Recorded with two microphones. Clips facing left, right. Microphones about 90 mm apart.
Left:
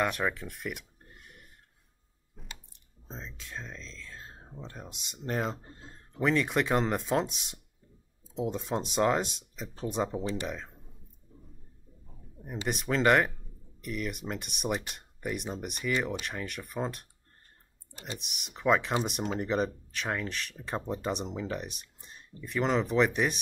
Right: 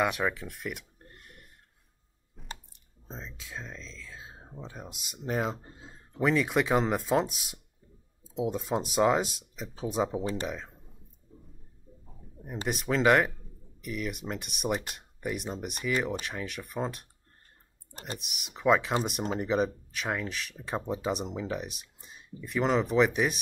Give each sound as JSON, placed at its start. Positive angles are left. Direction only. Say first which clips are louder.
{"t": 0.0, "sound": "a sound", "louder": "right 1 dB", "side_deg": 0}
{"t": 2.7, "sound": "speech", "louder": "right 1 dB", "side_deg": 0}
{"t": 12.6, "sound": "speech", "louder": "right 1 dB", "side_deg": 0}
{"t": 17.9, "sound": "speech", "louder": "right 1 dB", "side_deg": -40}
{"t": 18.2, "sound": "speech", "louder": "right 2 dB", "side_deg": 0}